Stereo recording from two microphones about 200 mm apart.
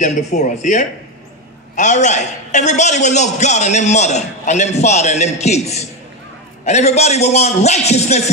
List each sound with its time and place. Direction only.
0.0 s a man's voice: 35° left (ahead or behind)